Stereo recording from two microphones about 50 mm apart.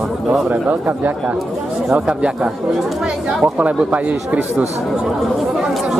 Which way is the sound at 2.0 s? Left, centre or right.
Centre.